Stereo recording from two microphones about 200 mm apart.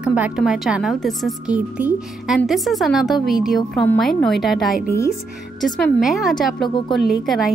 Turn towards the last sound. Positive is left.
turn(degrees=0)  # may be behind; listen again after turning